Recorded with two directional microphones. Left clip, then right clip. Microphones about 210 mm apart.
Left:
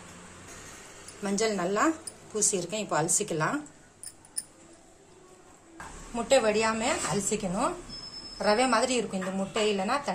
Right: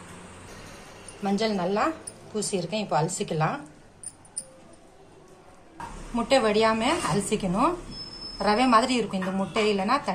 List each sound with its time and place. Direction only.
1.2 s a woman's voice: 40° left (ahead or behind)
6.1 s a woman's voice: 40° left (ahead or behind)
8.4 s a woman's voice: 35° left (ahead or behind)